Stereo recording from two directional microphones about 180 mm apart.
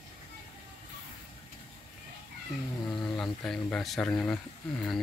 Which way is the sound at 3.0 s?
Centre (ahead or behind).